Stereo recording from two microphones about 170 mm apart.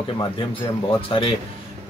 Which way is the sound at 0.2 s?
30° left (ahead or behind).